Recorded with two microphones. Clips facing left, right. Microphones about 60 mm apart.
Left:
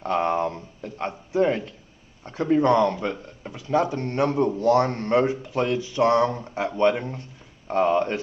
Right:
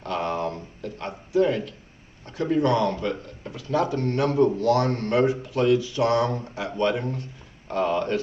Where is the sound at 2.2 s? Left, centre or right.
Left.